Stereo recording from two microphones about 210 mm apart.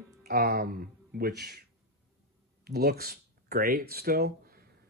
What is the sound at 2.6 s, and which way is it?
Speech, 50° right (ahead or behind).